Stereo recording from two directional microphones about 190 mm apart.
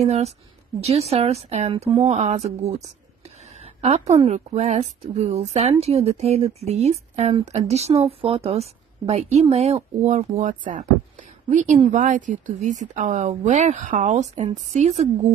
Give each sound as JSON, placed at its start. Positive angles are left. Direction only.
{"t": 0.0, "sound": "a woman's voice", "side_deg": -35}